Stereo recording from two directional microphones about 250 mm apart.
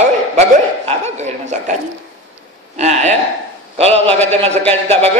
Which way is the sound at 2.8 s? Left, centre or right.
Right.